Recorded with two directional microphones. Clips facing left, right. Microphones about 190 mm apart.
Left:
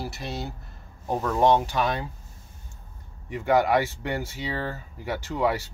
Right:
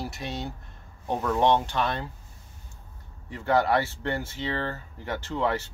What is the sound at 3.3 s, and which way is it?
Speech, 15° left (ahead or behind).